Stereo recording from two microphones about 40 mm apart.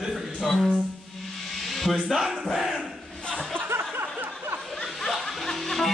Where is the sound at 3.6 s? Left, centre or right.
Right.